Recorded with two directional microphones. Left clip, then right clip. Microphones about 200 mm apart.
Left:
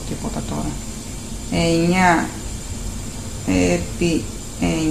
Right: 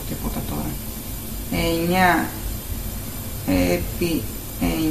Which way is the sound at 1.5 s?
25° left (ahead or behind).